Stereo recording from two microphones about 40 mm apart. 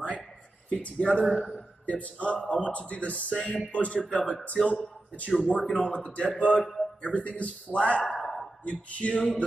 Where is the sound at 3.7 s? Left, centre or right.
Left.